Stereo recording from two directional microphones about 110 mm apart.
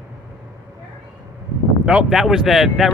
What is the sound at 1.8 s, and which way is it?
Speech, 5° right (ahead or behind).